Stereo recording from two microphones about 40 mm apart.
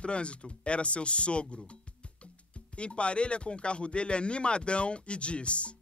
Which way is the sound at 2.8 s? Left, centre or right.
Left.